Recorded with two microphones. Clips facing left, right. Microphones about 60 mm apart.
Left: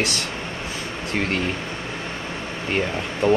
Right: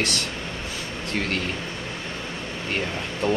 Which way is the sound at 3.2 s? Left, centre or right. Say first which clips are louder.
Left 6 dB; left.